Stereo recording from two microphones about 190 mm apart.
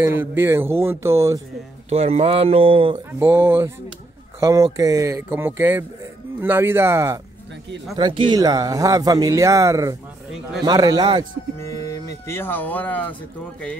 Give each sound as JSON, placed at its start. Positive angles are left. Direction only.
{"t": 0.0, "sound": "speech", "side_deg": -10}
{"t": 1.9, "sound": "speech", "side_deg": -35}
{"t": 3.2, "sound": "speech", "side_deg": -10}
{"t": 7.9, "sound": "speech", "side_deg": -25}
{"t": 11.6, "sound": "speech", "side_deg": 15}